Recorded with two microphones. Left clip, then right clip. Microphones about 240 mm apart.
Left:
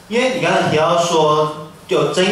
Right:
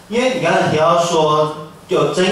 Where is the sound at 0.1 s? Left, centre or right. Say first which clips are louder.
Even; centre.